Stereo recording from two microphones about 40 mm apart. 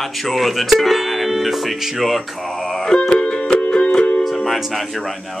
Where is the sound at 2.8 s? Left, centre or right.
Centre.